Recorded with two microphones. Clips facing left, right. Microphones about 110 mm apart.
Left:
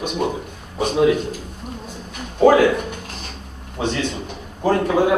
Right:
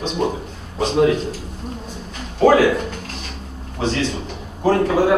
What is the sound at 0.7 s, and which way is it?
Speech, 10° left (ahead or behind).